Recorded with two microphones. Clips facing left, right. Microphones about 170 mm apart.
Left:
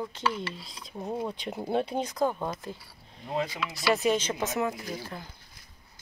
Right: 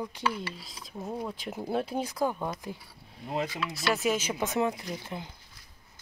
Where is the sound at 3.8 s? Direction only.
Centre (ahead or behind).